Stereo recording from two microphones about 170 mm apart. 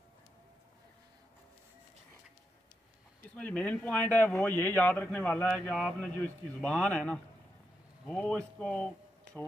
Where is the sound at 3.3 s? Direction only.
10° left (ahead or behind).